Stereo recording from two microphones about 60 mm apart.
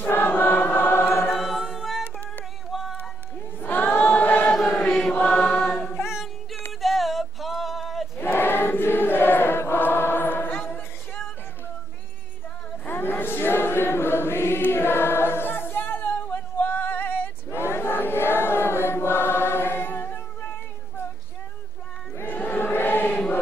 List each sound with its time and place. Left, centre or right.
0.0 s choir: left
1.3 s choir: centre
2.7 s a sound: centre
3.0 s choir: left
4.7 s chant: centre
5.1 s mantra: left
5.4 s choir: centre
6.8 s a sound: centre
8.2 s choir: left
12.8 s choir: left
17.5 s choir: left
22.2 s choir: left